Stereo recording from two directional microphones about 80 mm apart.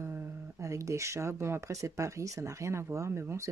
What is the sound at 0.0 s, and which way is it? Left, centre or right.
Speech, right.